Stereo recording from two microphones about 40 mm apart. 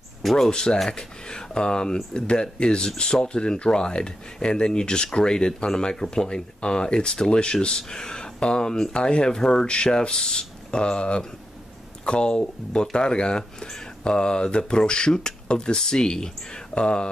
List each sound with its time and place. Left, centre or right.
0.2 s speech: centre
0.5 s speech: left